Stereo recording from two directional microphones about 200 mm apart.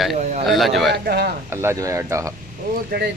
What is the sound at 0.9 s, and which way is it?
Speech, 55° right (ahead or behind).